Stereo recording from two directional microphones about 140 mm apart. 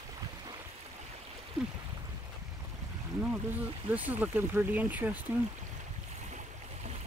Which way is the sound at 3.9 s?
10° right (ahead or behind).